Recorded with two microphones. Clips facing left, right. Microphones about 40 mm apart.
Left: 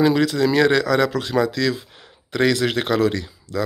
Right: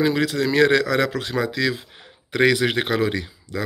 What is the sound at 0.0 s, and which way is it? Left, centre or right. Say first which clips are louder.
Speech: left 3 dB; centre.